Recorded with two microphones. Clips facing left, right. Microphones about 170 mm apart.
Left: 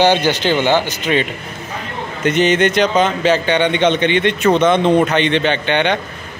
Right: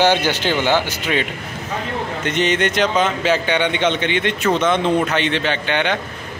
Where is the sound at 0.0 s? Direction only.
15° left (ahead or behind).